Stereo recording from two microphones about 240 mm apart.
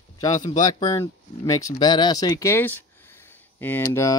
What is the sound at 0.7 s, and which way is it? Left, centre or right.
Speech, centre.